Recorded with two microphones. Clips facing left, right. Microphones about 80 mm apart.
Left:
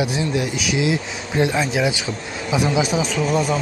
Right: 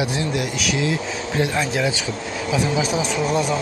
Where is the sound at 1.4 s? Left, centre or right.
Left.